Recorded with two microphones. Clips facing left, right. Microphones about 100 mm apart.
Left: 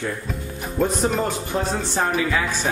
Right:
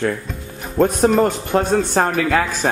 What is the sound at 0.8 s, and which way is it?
Speech, 60° right (ahead or behind).